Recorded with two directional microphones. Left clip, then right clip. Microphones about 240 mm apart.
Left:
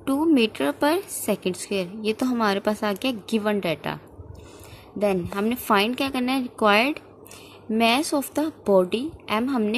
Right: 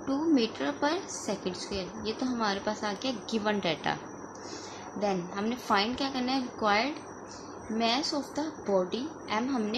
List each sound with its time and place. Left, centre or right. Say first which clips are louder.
0.0 s speech: left 7 dB; left
5.0 s speech: left 8 dB; left
8.1 s speech: left 8 dB; left